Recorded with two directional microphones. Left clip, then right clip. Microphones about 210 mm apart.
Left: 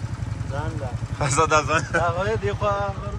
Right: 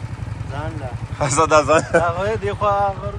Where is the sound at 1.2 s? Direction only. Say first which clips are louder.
Right 5 dB; 10° left (ahead or behind).